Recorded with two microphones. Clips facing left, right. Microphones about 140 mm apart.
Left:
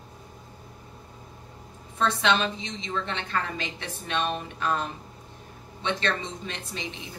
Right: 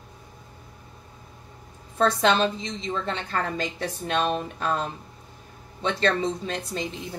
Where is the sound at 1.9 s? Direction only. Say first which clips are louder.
Right 4 dB; 40° right (ahead or behind).